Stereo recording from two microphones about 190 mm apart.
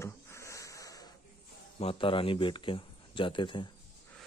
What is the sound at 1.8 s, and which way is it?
Speech, 30° left (ahead or behind).